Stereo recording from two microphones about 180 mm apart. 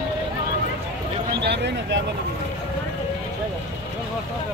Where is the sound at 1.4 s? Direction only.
75° right (ahead or behind).